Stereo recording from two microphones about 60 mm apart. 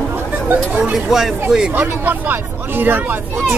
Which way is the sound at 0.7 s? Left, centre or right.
Centre.